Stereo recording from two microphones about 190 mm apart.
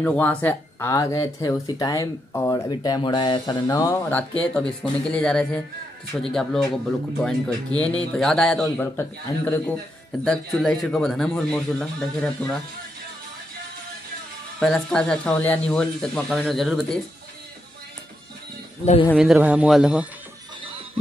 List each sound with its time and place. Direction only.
0.0 s speech: 5° left (ahead or behind)
14.6 s speech: 5° left (ahead or behind)
19.1 s speech: 5° right (ahead or behind)